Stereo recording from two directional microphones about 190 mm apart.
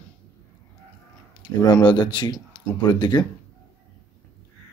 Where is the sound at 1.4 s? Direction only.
20° left (ahead or behind).